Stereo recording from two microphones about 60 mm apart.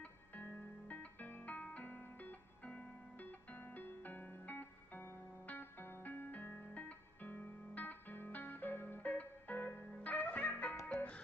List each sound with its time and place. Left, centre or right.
0.4 s music: left